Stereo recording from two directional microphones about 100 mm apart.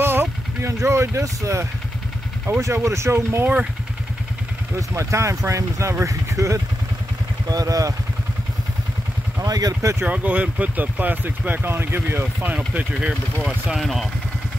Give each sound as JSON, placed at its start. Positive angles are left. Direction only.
{"t": 0.0, "sound": "vehicle", "side_deg": -25}
{"t": 0.8, "sound": "speech", "side_deg": -30}
{"t": 4.7, "sound": "speech", "side_deg": -30}
{"t": 9.4, "sound": "speech", "side_deg": -40}
{"t": 10.0, "sound": "speech", "side_deg": -15}
{"t": 12.5, "sound": "speech", "side_deg": -10}